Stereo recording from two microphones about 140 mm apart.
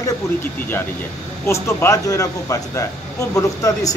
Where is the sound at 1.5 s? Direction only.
20° left (ahead or behind).